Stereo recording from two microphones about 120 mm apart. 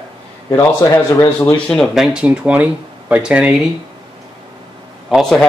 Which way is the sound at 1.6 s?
Centre (ahead or behind).